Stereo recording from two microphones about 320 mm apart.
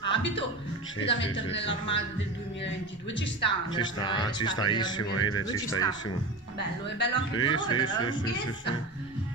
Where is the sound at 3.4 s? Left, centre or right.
Centre.